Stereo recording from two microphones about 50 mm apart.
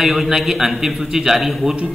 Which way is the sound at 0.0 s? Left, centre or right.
Centre.